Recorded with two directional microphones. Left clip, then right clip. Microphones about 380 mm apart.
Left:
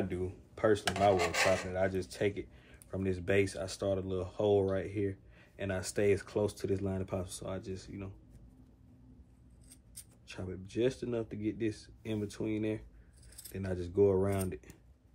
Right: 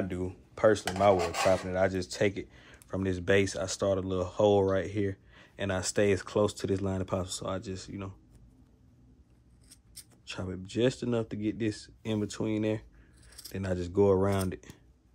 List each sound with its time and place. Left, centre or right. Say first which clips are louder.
0.1 s dishes: right 2 dB; right
9.9 s dishes: right 6 dB; right